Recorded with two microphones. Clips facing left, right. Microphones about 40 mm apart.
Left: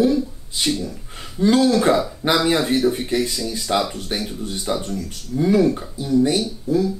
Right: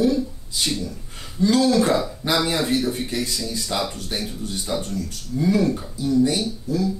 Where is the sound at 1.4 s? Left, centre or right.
Left.